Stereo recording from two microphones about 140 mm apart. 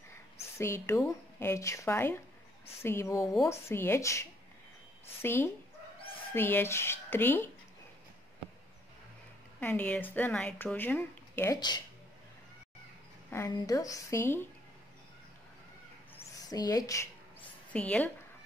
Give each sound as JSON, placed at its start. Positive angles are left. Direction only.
{"t": 0.4, "sound": "a woman's voice", "side_deg": 20}
{"t": 9.6, "sound": "speech", "side_deg": 10}
{"t": 11.5, "sound": "speech", "side_deg": 30}
{"t": 13.5, "sound": "speech", "side_deg": 25}
{"t": 16.3, "sound": "speech", "side_deg": 25}
{"t": 17.7, "sound": "speech", "side_deg": 10}